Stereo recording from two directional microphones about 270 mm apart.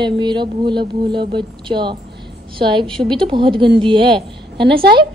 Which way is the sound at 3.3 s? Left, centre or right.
Centre.